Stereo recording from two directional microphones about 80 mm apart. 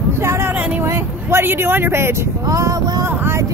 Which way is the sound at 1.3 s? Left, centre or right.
Right.